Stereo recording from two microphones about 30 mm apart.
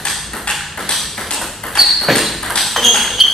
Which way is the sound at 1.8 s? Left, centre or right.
Centre.